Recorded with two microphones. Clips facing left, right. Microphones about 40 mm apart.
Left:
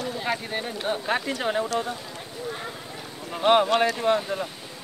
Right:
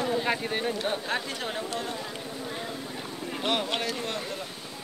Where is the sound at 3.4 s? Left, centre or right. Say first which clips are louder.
Left 10 dB; left.